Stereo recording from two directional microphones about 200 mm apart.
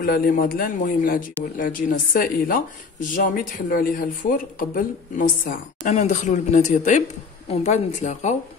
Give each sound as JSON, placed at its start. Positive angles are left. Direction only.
{"t": 0.0, "sound": "a man's voice", "side_deg": 45}